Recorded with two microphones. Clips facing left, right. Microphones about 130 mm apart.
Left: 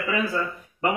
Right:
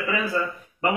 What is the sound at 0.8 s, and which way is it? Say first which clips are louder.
Speech: right 1 dB; centre (ahead or behind).